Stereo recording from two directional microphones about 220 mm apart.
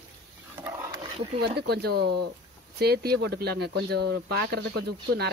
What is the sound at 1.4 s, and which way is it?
Speech, 50° right (ahead or behind).